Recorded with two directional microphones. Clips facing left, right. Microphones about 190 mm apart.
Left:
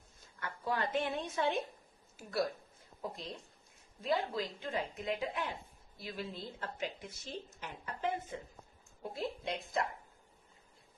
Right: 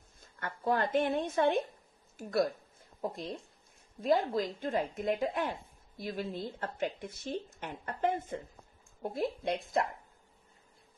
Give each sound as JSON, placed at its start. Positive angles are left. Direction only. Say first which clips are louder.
{"t": 0.4, "sound": "a woman's voice", "louder": "right 5 dB", "side_deg": -50}
{"t": 4.0, "sound": "a woman's voice", "louder": "right 6 dB", "side_deg": -45}